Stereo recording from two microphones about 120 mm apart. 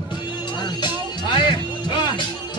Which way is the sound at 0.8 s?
40° left (ahead or behind).